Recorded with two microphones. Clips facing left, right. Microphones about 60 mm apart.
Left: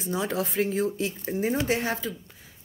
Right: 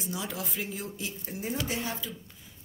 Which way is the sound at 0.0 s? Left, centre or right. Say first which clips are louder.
Left 8 dB; left.